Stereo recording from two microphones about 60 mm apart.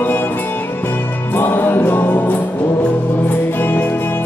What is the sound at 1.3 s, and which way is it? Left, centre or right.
Music, left.